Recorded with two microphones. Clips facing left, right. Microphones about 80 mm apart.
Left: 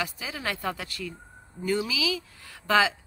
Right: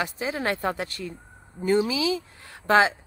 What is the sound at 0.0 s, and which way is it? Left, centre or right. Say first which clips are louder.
Speech: right 5 dB; right.